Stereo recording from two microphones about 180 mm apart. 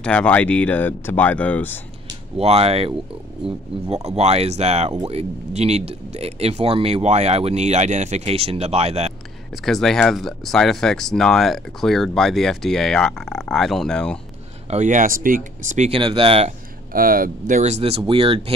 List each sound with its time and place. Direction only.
0.0 s speech: 5° left (ahead or behind)
2.3 s speech: 35° right (ahead or behind)
9.7 s speech: centre (ahead or behind)
14.7 s speech: 45° right (ahead or behind)
16.0 s speech: 30° right (ahead or behind)
16.9 s speech: 50° right (ahead or behind); by 18.4 s 30° right (ahead or behind)